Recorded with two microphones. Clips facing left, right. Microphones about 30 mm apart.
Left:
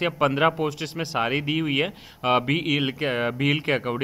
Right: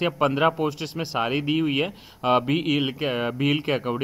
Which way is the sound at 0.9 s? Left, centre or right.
Centre.